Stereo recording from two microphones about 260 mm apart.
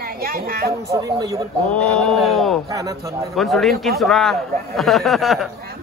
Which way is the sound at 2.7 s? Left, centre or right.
Centre.